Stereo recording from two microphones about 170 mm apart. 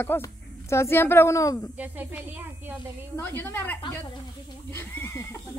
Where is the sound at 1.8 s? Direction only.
10° right (ahead or behind).